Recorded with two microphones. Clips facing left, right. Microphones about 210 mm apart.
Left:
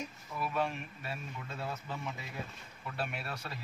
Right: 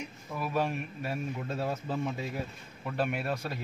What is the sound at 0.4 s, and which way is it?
A man's voice, 40° right (ahead or behind).